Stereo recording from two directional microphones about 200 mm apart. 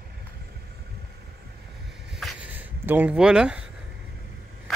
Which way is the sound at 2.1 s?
5° right (ahead or behind).